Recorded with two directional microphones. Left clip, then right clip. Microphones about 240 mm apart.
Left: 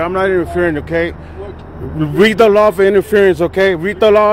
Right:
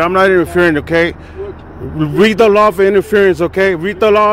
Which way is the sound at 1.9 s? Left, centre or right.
Centre.